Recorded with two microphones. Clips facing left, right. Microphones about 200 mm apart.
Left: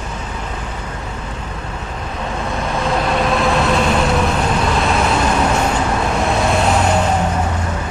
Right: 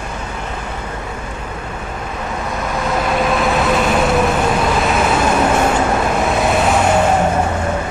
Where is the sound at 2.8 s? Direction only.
Centre (ahead or behind).